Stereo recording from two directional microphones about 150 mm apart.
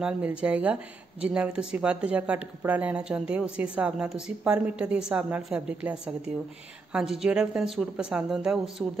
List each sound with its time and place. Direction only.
0.0 s a woman's voice: 10° right (ahead or behind)